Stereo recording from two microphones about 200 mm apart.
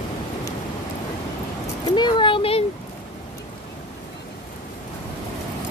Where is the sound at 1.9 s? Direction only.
25° left (ahead or behind).